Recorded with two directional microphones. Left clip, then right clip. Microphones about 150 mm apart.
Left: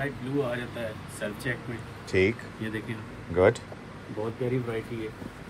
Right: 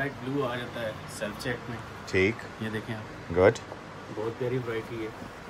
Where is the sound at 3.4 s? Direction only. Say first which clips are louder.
Even; 15° right (ahead or behind).